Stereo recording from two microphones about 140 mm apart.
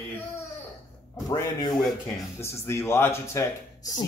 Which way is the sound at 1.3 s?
35° left (ahead or behind).